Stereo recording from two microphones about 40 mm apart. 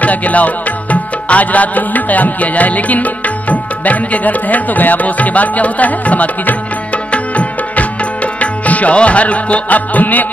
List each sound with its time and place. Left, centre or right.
0.0 s music: left